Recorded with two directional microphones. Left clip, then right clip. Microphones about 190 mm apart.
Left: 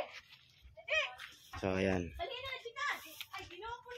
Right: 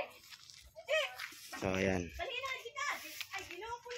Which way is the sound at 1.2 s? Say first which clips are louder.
Right 5 dB; 10° right (ahead or behind).